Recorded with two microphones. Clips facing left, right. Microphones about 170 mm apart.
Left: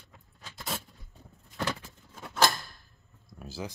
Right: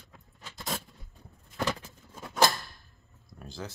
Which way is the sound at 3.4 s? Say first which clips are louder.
Left 2 dB; 5° left (ahead or behind).